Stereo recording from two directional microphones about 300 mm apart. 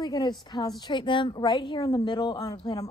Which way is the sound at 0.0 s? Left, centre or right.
Centre.